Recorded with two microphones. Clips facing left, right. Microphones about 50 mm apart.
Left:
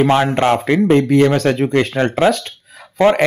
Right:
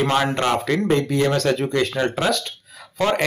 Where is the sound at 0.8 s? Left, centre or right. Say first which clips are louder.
Left 9 dB; left.